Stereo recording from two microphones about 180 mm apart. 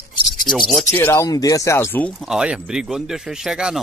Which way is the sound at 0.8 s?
15° left (ahead or behind).